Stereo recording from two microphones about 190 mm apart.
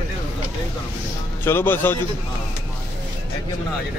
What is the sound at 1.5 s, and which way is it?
Speech, 10° left (ahead or behind).